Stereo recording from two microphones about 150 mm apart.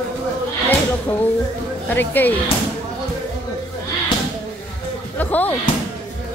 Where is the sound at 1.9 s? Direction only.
15° left (ahead or behind).